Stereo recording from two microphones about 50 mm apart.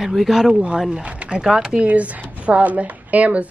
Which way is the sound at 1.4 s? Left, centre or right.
Centre.